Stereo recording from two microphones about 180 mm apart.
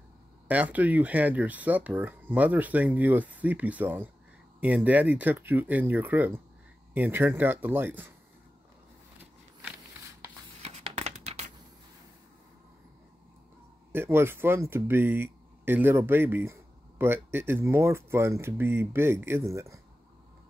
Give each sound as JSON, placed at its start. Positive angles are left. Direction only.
{"t": 0.5, "sound": "speech", "side_deg": -10}
{"t": 10.6, "sound": "tearing", "side_deg": -35}
{"t": 13.9, "sound": "speech", "side_deg": -15}